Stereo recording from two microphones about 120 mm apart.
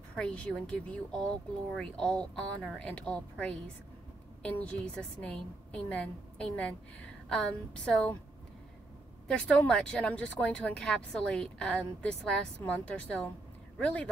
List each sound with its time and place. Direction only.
0.1 s speech: 10° left (ahead or behind)
9.3 s speech: 10° left (ahead or behind)